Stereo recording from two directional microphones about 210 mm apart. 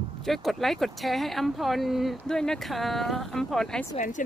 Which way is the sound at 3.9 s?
35° left (ahead or behind).